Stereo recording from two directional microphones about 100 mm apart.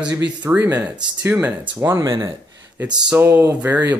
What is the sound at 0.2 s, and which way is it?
Speech, 15° right (ahead or behind).